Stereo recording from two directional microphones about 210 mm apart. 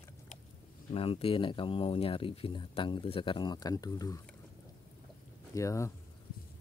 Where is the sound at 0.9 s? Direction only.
25° left (ahead or behind).